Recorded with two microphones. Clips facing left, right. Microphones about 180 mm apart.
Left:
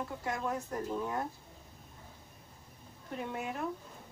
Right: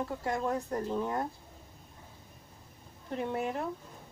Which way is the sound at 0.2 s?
35° right (ahead or behind).